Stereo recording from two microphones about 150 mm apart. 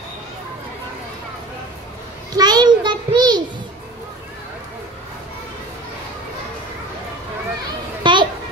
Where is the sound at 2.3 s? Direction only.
25° right (ahead or behind).